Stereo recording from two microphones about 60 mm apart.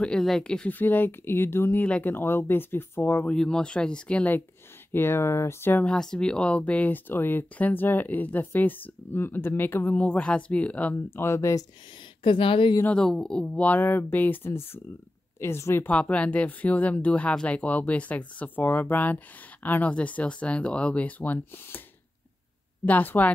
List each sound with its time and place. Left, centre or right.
0.2 s speech: centre
0.7 s speech: left
1.8 s speech: left
2.0 s speech: left
3.3 s speech: centre
4.9 s speech: left
5.9 s speech: centre; by 9.9 s left
9.9 s speech: left
11.1 s speech: left
12.9 s speech: centre
13.6 s speech: left
15.9 s speech: left
22.8 s speech: left